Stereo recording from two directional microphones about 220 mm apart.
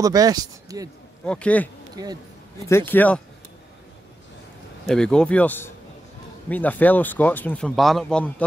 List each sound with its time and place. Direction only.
0.0 s speech: 15° right (ahead or behind)
1.2 s speech: 5° left (ahead or behind)
2.0 s speech: 15° right (ahead or behind)
2.6 s speech: 10° left (ahead or behind)
4.8 s speech: 5° left (ahead or behind)